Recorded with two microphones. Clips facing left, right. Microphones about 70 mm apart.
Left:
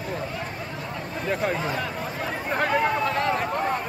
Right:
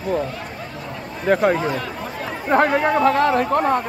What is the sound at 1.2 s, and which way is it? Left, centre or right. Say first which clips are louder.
Speech: right 10 dB; right.